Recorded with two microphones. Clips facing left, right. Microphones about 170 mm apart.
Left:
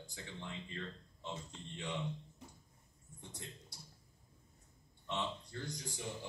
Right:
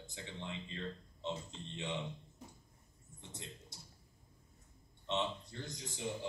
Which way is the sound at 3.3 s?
20° right (ahead or behind).